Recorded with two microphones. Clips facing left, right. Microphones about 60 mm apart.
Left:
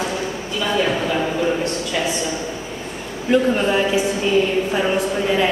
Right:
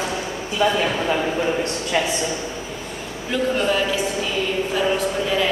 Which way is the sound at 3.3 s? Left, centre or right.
Left.